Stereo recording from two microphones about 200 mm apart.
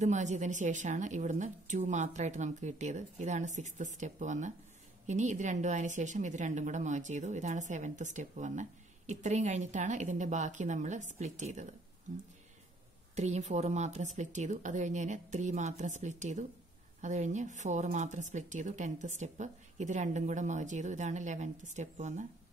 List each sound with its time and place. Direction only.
0.0 s a woman's voice: 35° right (ahead or behind)
13.1 s a woman's voice: 35° right (ahead or behind)